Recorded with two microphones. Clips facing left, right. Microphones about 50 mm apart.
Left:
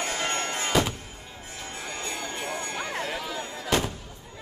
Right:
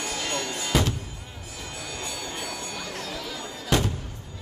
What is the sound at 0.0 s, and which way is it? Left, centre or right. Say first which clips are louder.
Music: left 1 dB; left.